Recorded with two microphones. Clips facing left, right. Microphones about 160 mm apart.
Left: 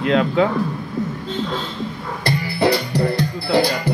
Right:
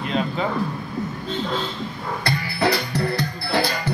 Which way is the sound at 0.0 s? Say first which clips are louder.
Left 7 dB; 90° left.